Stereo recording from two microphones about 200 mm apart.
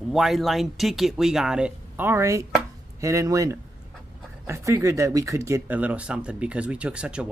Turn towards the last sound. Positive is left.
turn(degrees=-5)  # may be behind; listen again after turning